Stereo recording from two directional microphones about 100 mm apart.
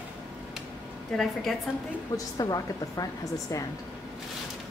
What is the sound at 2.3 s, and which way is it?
Speech, 40° left (ahead or behind).